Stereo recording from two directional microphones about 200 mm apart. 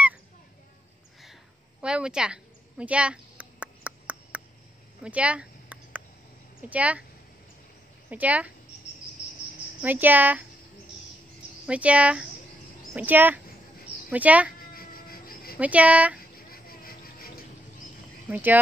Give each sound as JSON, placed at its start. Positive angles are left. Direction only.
{"t": 1.8, "sound": "a sound", "side_deg": -5}
{"t": 6.7, "sound": "speech", "side_deg": -5}
{"t": 8.1, "sound": "speech", "side_deg": -10}
{"t": 9.8, "sound": "speech", "side_deg": -10}
{"t": 11.6, "sound": "speech", "side_deg": -5}
{"t": 14.7, "sound": "a sound", "side_deg": 45}
{"t": 15.6, "sound": "speech", "side_deg": -5}
{"t": 16.3, "sound": "a sound", "side_deg": 45}
{"t": 18.3, "sound": "speech", "side_deg": -10}